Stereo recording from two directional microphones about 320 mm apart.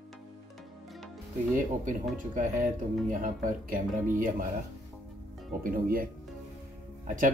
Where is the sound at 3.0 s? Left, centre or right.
Right.